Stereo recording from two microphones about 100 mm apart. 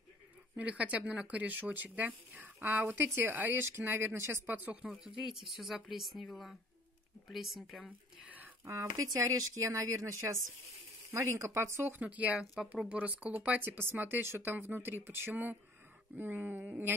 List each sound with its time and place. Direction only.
0.6 s speech: 15° right (ahead or behind)
4.9 s a woman's voice: 5° right (ahead or behind)
8.6 s speech: 30° right (ahead or behind)